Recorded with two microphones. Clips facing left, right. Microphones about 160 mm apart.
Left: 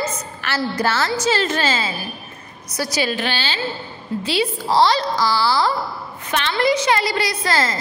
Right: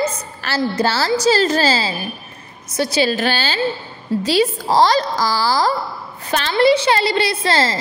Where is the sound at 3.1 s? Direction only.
40° right (ahead or behind).